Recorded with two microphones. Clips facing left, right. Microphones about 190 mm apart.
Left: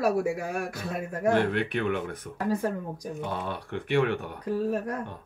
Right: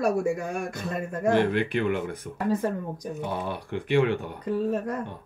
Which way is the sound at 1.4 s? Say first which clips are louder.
Right 3 dB; 10° right (ahead or behind).